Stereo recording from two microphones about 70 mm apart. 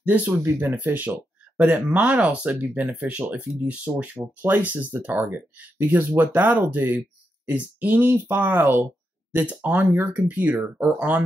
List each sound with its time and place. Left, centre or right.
0.0 s speech: right